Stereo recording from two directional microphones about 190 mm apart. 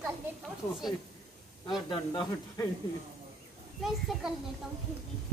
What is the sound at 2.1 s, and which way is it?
Speech, 20° left (ahead or behind).